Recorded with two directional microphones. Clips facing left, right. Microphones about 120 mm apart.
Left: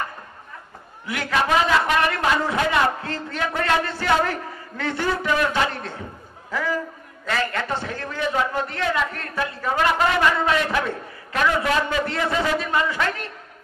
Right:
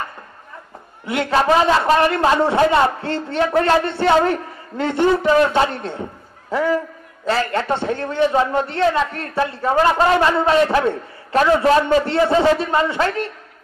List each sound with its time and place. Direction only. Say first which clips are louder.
1.0 s a man's voice: right 6 dB; 25° right (ahead or behind)